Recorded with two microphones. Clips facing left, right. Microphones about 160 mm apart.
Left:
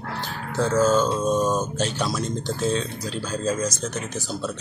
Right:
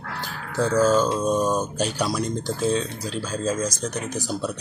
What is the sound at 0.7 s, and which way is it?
Speech, 10° right (ahead or behind).